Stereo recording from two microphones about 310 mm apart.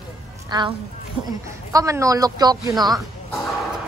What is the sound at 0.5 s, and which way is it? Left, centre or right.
Speech, centre.